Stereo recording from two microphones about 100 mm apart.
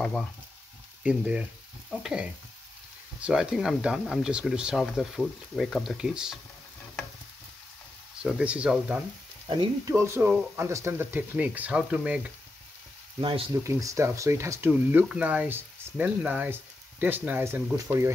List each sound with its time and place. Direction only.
0.0 s frying: centre (ahead or behind)
1.0 s speech: 10° right (ahead or behind)
1.9 s stir: 5° right (ahead or behind)
3.2 s speech: 10° right (ahead or behind)
8.2 s speech: 10° right (ahead or behind)
9.8 s speech: 30° right (ahead or behind)
10.2 s speech: 15° right (ahead or behind)
10.6 s speech: 30° right (ahead or behind); by 12.3 s 10° right (ahead or behind)
13.2 s speech: 65° right (ahead or behind)
13.6 s speech: 30° right (ahead or behind)
14.7 s speech: 15° right (ahead or behind)